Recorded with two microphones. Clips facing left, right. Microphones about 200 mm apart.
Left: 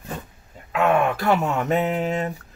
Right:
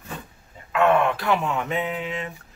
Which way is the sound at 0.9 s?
45° left (ahead or behind).